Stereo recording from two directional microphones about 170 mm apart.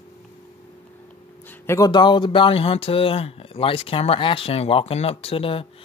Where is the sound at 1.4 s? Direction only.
15° left (ahead or behind).